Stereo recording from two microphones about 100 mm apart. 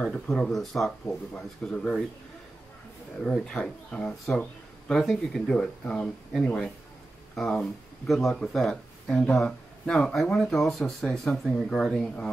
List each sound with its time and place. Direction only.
0.0 s speech: 5° left (ahead or behind)
3.2 s speech: 10° left (ahead or behind)